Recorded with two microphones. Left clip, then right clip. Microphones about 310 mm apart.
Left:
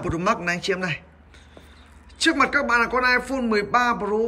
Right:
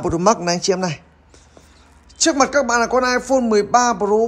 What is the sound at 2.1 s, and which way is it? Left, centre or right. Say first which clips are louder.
Speech: right 4 dB; centre.